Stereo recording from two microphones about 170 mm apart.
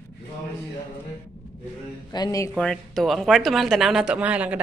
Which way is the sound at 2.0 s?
25° left (ahead or behind).